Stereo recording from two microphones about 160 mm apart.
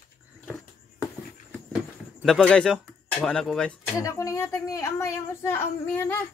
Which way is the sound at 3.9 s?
20° left (ahead or behind).